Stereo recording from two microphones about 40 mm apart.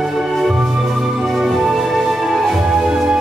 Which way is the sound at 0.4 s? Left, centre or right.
Centre.